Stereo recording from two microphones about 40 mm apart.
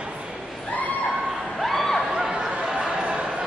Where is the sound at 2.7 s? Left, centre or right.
Centre.